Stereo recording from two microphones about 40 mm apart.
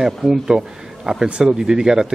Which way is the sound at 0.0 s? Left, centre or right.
Centre.